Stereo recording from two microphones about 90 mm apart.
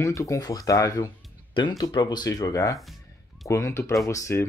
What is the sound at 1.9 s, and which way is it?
Speech, 50° left (ahead or behind).